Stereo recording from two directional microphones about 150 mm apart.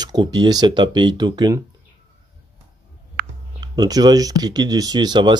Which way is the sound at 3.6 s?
25° right (ahead or behind).